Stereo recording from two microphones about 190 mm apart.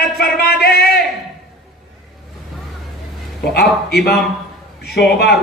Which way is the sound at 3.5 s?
55° left (ahead or behind).